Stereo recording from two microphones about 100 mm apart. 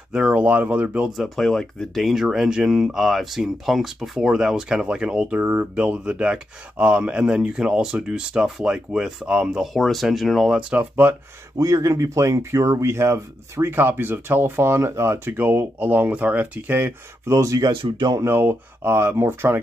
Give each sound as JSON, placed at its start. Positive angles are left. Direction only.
{"t": 0.1, "sound": "speech", "side_deg": -10}
{"t": 1.1, "sound": "speech", "side_deg": 0}
{"t": 9.8, "sound": "speech", "side_deg": 0}
{"t": 11.5, "sound": "speech", "side_deg": -30}
{"t": 17.6, "sound": "speech", "side_deg": -50}
{"t": 18.1, "sound": "speech", "side_deg": -25}